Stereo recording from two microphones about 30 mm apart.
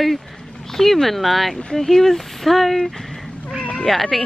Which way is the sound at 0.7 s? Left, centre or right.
Centre.